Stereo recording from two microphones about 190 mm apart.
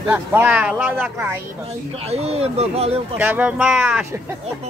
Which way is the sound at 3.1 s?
10° right (ahead or behind).